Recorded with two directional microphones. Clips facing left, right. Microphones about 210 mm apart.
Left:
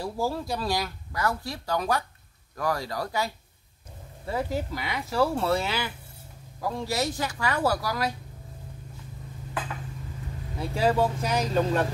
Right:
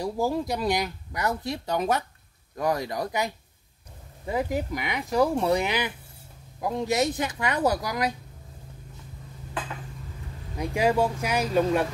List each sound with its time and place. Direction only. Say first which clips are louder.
0.0 s speech: right 3 dB; 20° right (ahead or behind)
10.6 s speech: right 1 dB; 15° right (ahead or behind)